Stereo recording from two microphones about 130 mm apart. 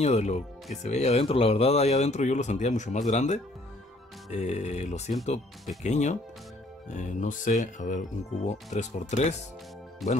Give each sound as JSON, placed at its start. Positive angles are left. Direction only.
{"t": 0.0, "sound": "speech", "side_deg": 60}
{"t": 6.9, "sound": "speech", "side_deg": 75}